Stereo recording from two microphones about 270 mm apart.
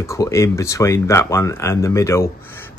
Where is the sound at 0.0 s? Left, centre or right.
Centre.